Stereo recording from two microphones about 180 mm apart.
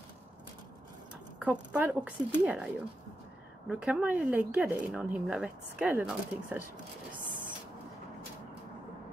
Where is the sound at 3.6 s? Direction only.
5° right (ahead or behind).